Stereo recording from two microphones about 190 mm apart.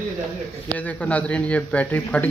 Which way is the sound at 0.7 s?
5° left (ahead or behind).